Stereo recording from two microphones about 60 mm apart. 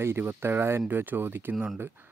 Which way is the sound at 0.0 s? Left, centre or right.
Right.